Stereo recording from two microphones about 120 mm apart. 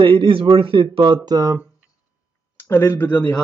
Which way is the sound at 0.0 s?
45° right (ahead or behind).